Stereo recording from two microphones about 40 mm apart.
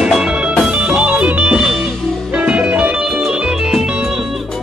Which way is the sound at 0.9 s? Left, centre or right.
Right.